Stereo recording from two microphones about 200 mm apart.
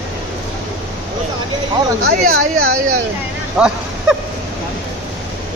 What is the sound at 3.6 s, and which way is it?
Speech, 5° right (ahead or behind).